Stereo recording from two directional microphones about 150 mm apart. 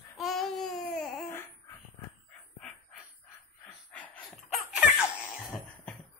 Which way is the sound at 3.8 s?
10° left (ahead or behind).